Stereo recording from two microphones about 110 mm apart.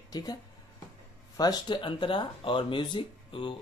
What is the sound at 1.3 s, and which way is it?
Speech, 35° left (ahead or behind).